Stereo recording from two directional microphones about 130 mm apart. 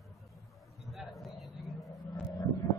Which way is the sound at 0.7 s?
Centre (ahead or behind).